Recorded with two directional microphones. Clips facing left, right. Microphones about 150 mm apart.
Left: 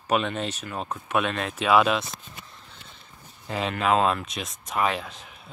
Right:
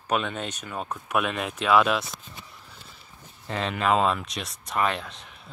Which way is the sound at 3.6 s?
Centre (ahead or behind).